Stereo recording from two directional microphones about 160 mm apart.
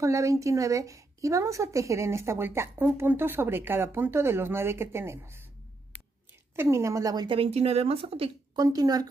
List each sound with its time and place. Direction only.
0.0 s a woman's voice: 20° right (ahead or behind)
6.5 s a woman's voice: 15° right (ahead or behind)
7.2 s speech: 35° right (ahead or behind)
8.5 s a woman's voice: 25° right (ahead or behind)